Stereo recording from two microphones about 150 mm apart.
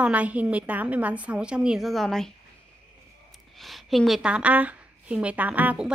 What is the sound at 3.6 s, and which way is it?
Speech, centre (ahead or behind).